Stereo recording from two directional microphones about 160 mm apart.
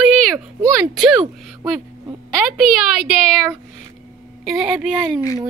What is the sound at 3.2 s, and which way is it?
A woman's voice, 5° left (ahead or behind).